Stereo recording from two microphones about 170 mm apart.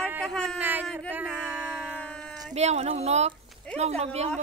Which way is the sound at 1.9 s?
5° left (ahead or behind).